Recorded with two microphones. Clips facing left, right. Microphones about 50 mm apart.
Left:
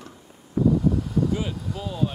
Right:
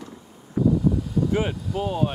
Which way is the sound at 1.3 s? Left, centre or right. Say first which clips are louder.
Right 3 dB; right.